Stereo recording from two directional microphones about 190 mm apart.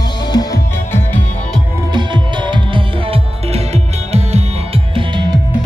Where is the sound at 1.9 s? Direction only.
25° right (ahead or behind).